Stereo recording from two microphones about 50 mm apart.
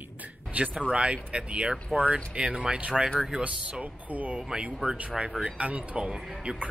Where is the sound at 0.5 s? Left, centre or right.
Right.